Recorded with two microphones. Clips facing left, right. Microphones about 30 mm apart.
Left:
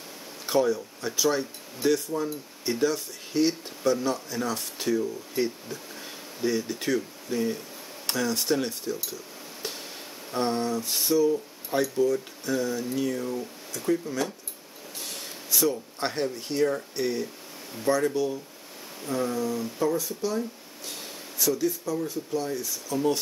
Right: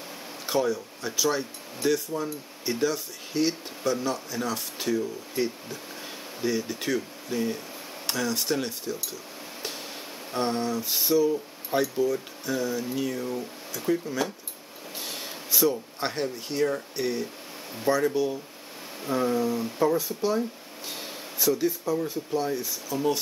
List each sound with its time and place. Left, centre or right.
0.5 s speech: centre
9.6 s a sound: centre
10.3 s speech: centre
22.8 s speech: centre